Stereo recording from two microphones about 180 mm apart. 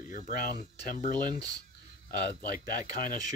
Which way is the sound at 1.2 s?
20° right (ahead or behind).